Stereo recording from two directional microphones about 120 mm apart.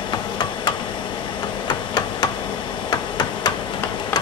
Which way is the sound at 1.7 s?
35° left (ahead or behind).